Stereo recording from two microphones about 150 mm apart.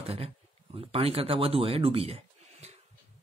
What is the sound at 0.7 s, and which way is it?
Speech, 40° right (ahead or behind).